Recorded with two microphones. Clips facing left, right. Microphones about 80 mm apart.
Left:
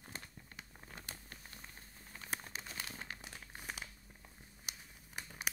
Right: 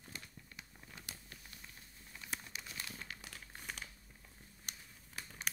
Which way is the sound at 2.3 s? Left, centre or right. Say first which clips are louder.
Left 3 dB; left.